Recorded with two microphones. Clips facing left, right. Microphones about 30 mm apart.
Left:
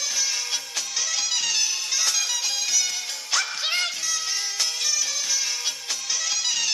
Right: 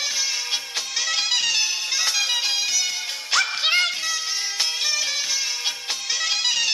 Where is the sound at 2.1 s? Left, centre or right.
Right.